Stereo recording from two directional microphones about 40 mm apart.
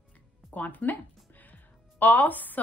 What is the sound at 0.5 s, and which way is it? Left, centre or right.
A woman's voice, left.